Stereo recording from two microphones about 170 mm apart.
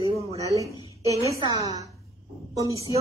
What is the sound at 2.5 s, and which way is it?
Speech, 20° right (ahead or behind).